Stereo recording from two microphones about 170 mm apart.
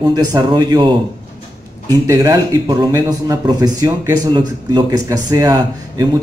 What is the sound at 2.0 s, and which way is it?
Speech, 25° right (ahead or behind).